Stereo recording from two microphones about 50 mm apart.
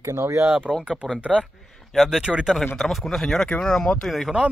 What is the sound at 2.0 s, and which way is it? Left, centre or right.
Speech, centre.